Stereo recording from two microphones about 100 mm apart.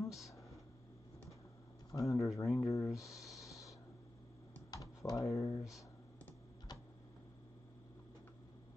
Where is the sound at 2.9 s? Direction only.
35° left (ahead or behind).